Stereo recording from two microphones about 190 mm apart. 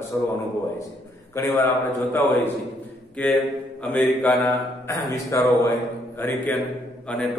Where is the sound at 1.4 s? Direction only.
15° left (ahead or behind).